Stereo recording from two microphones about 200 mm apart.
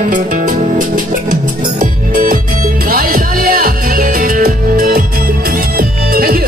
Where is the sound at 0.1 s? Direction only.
40° right (ahead or behind).